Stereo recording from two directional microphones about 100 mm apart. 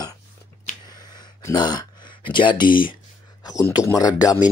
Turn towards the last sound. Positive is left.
turn(degrees=40)  # may be behind; listen again after turning